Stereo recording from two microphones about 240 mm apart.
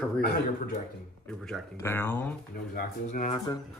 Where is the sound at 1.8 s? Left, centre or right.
Centre.